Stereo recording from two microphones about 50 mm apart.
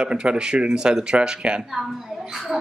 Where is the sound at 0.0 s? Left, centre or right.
Centre.